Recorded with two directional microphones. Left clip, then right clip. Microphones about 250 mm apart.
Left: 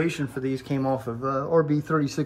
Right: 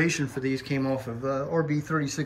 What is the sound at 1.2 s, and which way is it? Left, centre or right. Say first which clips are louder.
Speech: left 1 dB; centre.